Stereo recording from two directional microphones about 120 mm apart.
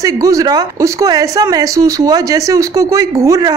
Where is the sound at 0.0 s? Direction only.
30° right (ahead or behind).